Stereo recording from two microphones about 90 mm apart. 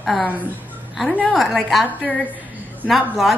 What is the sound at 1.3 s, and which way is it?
Speech, centre (ahead or behind).